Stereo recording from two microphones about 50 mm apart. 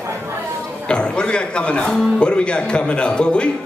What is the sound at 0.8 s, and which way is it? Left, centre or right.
A man's voice, centre.